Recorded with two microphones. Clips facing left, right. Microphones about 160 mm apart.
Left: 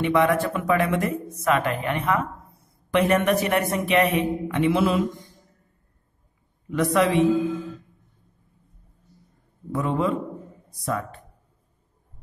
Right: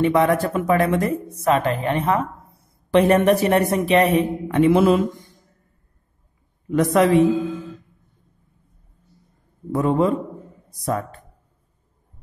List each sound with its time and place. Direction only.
0.0 s speech: 40° right (ahead or behind)
6.7 s a man's voice: 40° right (ahead or behind)
9.7 s a man's voice: 40° right (ahead or behind)